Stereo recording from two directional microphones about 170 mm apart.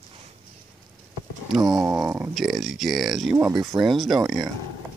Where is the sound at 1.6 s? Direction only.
20° right (ahead or behind).